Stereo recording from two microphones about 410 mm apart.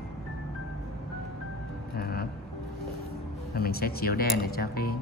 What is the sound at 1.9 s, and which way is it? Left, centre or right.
Vehicle, left.